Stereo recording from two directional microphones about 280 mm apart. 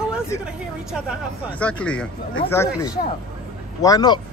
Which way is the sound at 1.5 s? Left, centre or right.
Centre.